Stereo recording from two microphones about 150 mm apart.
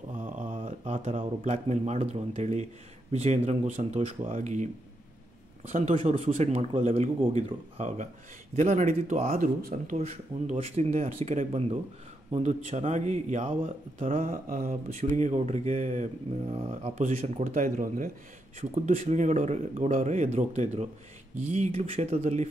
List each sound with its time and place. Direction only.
0.2 s a sound: 55° right (ahead or behind)
1.4 s speech: 45° right (ahead or behind)
5.7 s speech: 50° right (ahead or behind); by 9.9 s 75° right (ahead or behind)
9.9 s speech: 50° right (ahead or behind)
13.5 s speech: 40° right (ahead or behind)
14.1 s speech: 60° right (ahead or behind); by 17.1 s 40° right (ahead or behind)
17.1 s speech: 55° right (ahead or behind)
18.6 s speech: 45° right (ahead or behind)